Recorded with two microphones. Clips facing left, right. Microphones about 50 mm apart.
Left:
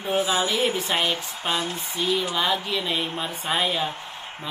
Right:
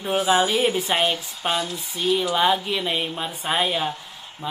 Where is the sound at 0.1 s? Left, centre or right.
Right.